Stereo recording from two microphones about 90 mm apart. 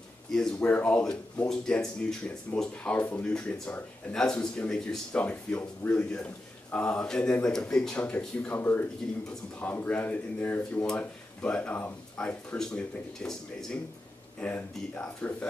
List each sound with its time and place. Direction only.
0.3 s speech: 10° left (ahead or behind)